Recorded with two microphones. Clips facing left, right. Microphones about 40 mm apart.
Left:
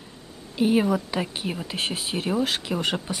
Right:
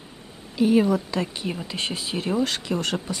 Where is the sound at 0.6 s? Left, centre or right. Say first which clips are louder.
Right 2 dB; centre.